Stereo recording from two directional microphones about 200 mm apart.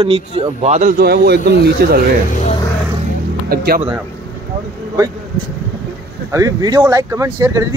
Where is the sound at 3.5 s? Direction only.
50° right (ahead or behind).